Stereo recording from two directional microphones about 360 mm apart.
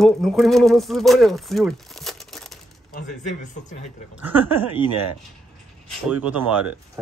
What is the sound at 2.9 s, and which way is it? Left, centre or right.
Speech, left.